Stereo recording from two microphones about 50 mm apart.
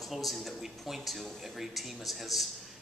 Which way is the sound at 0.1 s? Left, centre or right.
Centre.